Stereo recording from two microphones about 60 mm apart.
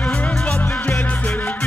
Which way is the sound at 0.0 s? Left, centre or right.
Left.